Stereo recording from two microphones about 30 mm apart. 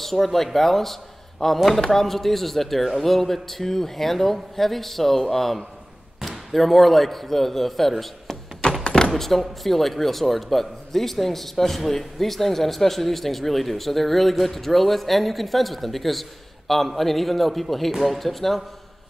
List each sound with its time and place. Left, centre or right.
0.0 s speech: centre
8.6 s thunk: left
9.1 s speech: centre